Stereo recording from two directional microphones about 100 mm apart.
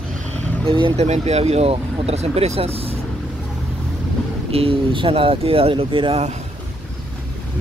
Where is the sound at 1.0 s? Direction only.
90° right.